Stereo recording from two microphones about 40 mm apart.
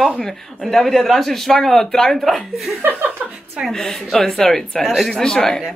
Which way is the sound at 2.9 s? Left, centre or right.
Right.